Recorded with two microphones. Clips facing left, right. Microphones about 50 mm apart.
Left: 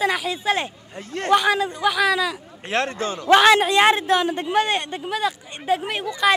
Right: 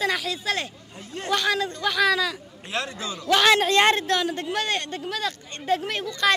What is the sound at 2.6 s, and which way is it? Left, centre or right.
Speech, left.